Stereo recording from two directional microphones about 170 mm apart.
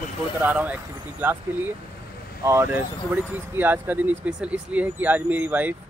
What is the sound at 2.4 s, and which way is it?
Speech, 15° right (ahead or behind).